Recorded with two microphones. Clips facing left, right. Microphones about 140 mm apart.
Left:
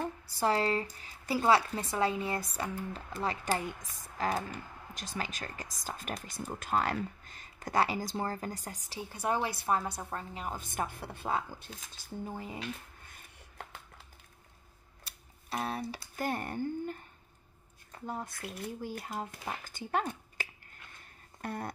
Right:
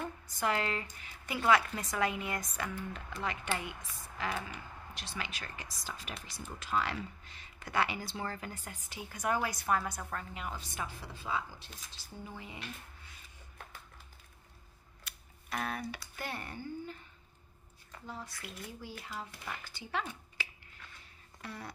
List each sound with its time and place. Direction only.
0.0 s speech: 35° left (ahead or behind)
10.6 s a woman's voice: 50° left (ahead or behind)
13.0 s a sound: 50° left (ahead or behind)
15.0 s music: 30° left (ahead or behind)
16.2 s a woman's voice: 45° left (ahead or behind)
18.0 s a woman's voice: 50° left (ahead or behind)
21.0 s a sound: 50° left (ahead or behind)